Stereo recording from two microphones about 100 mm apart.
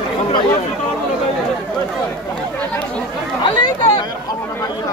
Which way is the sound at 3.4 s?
45° left (ahead or behind).